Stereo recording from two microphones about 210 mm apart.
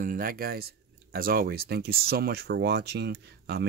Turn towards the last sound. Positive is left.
turn(degrees=-50)  # may be behind; listen again after turning